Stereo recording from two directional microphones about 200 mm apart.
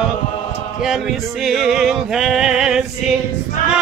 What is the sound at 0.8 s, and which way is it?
Music, centre (ahead or behind).